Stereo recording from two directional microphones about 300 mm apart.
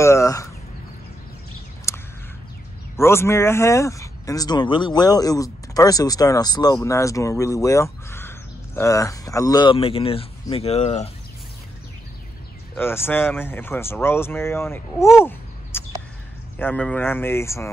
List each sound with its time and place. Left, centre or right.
0.0 s speech: centre
1.9 s a sound: centre
3.0 s speech: centre
12.7 s speech: centre